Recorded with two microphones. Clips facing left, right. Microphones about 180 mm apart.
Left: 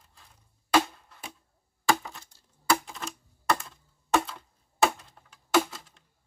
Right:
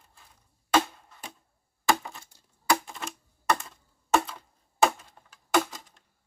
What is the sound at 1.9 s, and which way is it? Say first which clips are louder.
Crushing: even; centre (ahead or behind).